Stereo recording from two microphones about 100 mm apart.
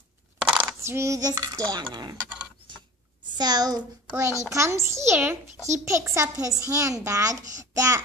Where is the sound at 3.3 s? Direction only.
45° right (ahead or behind).